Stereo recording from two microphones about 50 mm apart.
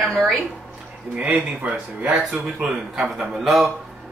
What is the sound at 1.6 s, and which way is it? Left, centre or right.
Speech, right.